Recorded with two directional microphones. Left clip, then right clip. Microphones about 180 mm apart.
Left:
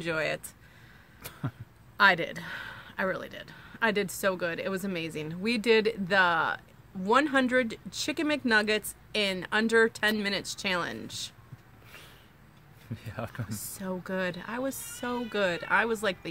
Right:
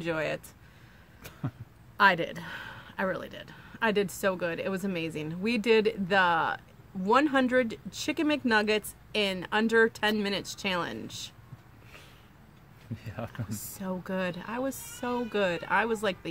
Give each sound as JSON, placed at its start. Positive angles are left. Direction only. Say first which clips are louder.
{"t": 0.0, "sound": "speech", "louder": "left 1 dB", "side_deg": 0}
{"t": 2.0, "sound": "speech", "louder": "even", "side_deg": -5}
{"t": 12.9, "sound": "speech", "louder": "left 1 dB", "side_deg": 20}
{"t": 13.5, "sound": "speech", "louder": "even", "side_deg": -5}